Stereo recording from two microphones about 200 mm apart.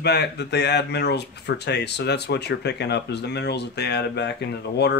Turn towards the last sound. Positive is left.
turn(degrees=55)  # may be behind; listen again after turning